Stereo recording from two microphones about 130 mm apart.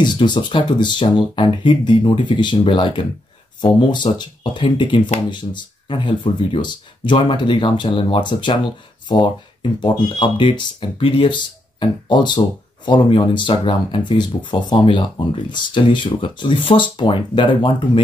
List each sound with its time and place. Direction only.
0.0 s speech: 35° left (ahead or behind)